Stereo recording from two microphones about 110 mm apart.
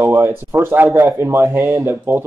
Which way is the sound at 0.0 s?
20° right (ahead or behind).